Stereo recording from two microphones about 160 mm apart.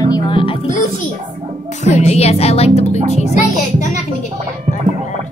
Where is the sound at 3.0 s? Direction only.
45° left (ahead or behind).